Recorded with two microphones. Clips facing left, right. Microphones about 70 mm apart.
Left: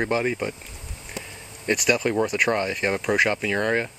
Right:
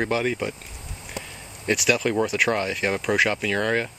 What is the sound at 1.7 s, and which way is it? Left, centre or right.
Speech, centre.